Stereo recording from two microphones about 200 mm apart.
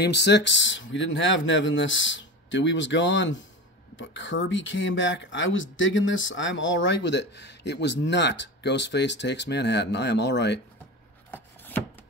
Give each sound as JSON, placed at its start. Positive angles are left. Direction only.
{"t": 0.0, "sound": "speech", "side_deg": 60}
{"t": 11.3, "sound": "chopping", "side_deg": 10}